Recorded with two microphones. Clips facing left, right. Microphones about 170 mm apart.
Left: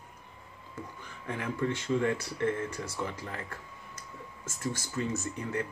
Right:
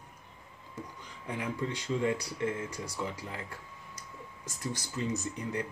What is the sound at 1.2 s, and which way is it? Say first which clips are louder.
Speech: left 3 dB; 15° right (ahead or behind).